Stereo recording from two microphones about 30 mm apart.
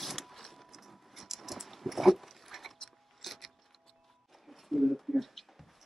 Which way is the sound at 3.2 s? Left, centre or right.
Centre.